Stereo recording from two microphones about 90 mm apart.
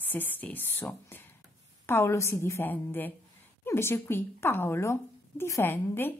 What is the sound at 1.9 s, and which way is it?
Speech, 30° left (ahead or behind).